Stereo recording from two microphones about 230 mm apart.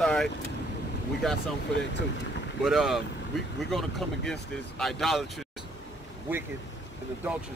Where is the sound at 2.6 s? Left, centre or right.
Centre.